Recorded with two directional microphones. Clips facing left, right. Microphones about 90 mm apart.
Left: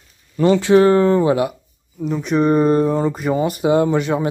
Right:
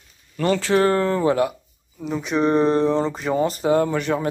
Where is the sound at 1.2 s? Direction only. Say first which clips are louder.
Left 3 dB; 5° left (ahead or behind).